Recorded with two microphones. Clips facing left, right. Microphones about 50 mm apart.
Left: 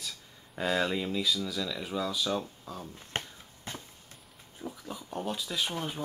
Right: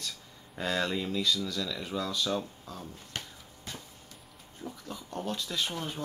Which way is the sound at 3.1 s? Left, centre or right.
Left.